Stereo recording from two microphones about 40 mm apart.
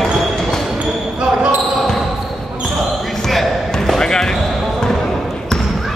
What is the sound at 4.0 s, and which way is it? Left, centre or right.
Basketball bounce, centre.